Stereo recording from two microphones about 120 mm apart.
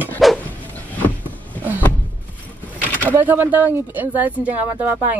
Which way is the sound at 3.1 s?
15° right (ahead or behind).